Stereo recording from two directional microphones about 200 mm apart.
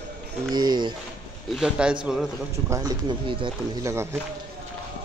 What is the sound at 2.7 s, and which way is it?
Speech, 20° right (ahead or behind).